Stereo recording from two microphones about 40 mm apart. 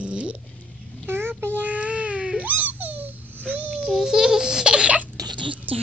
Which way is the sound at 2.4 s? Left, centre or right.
Right.